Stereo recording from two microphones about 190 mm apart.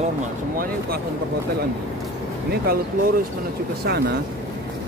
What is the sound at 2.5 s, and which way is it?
Speech, 50° right (ahead or behind).